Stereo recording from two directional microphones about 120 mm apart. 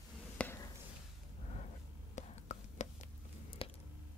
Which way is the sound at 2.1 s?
75° left (ahead or behind).